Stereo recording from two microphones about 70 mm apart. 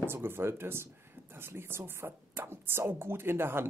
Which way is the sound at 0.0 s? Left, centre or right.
Right.